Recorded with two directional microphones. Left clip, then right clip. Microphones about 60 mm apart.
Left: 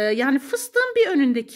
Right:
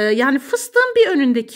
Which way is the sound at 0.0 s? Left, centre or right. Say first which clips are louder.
Right 4 dB; right.